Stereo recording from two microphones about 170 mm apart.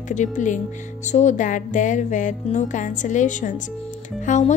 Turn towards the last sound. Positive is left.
turn(degrees=45)  # may be behind; listen again after turning